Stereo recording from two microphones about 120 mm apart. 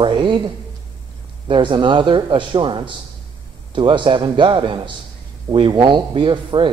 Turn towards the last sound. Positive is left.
turn(degrees=-40)  # may be behind; listen again after turning